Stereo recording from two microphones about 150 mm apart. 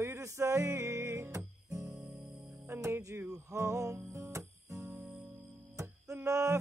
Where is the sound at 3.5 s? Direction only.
20° right (ahead or behind).